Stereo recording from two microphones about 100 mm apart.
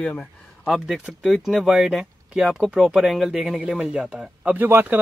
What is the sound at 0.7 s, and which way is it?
Speech, 5° right (ahead or behind).